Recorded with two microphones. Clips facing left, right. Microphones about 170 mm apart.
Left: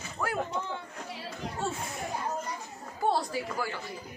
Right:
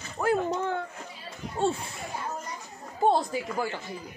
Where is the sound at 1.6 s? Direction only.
30° right (ahead or behind).